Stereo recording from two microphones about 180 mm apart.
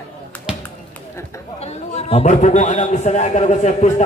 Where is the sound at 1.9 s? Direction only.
35° left (ahead or behind).